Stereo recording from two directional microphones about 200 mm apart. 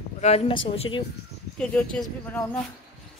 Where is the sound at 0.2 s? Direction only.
30° left (ahead or behind).